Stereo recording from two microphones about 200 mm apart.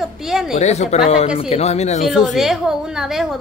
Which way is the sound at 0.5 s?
35° left (ahead or behind).